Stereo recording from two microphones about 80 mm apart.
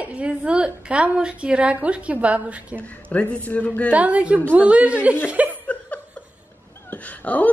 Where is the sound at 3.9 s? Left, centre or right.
Centre.